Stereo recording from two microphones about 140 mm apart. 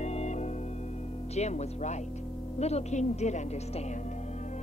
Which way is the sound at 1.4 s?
55° left (ahead or behind).